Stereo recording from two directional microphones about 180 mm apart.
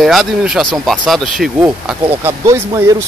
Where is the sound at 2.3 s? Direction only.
15° right (ahead or behind).